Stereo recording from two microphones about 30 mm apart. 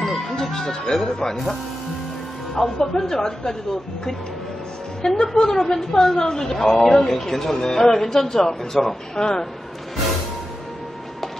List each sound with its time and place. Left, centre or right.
0.0 s music: centre
1.3 s speech: centre
2.5 s a woman's voice: centre
5.2 s a woman's voice: centre
9.1 s speech: left